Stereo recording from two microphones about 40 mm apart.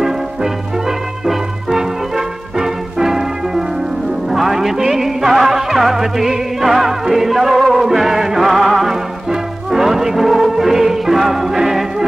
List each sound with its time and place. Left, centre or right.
0.0 s music: centre